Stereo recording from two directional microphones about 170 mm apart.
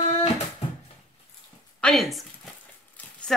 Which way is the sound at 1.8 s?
Centre (ahead or behind).